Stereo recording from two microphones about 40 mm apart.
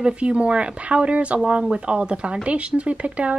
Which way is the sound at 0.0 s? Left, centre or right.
Right.